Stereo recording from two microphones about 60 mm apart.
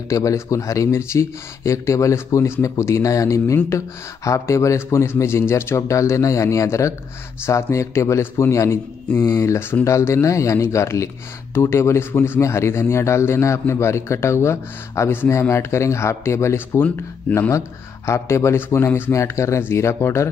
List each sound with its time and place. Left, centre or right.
0.1 s a man's voice: left
16.8 s speech: left
17.5 s a man's voice: left
19.2 s a man's voice: left